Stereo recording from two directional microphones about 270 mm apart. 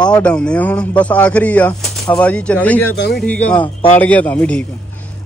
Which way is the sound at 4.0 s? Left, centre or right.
Centre.